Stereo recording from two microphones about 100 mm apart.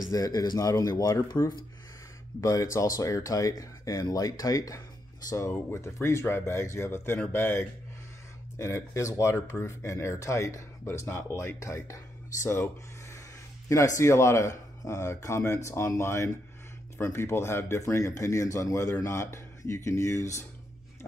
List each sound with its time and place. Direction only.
0.1 s speech: 40° left (ahead or behind)